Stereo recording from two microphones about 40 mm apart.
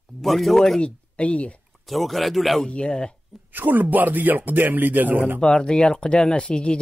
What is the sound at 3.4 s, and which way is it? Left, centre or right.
A man's voice, right.